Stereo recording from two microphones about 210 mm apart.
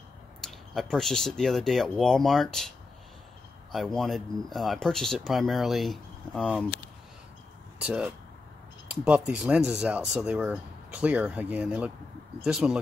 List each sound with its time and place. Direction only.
0.4 s speech: centre (ahead or behind)
3.7 s speech: centre (ahead or behind)
7.8 s speech: 5° right (ahead or behind)